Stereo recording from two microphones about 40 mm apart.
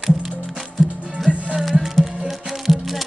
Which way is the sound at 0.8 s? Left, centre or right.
Centre.